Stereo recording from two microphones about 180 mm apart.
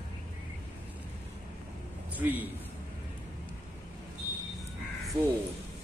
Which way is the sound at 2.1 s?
10° right (ahead or behind).